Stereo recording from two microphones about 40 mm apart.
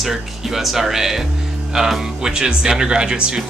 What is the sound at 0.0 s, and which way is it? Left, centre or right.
Speech, centre.